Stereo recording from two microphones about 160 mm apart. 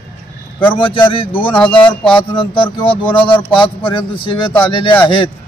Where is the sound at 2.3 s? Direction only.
30° left (ahead or behind).